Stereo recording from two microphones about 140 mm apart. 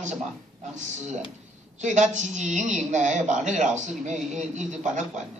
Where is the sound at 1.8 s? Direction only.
60° right (ahead or behind).